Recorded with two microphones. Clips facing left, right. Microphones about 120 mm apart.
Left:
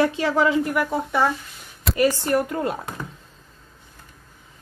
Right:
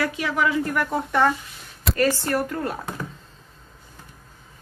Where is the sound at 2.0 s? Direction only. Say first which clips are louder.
Left 2 dB; 15° left (ahead or behind).